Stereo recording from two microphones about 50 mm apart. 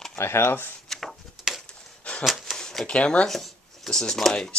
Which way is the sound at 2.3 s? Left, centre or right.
Centre.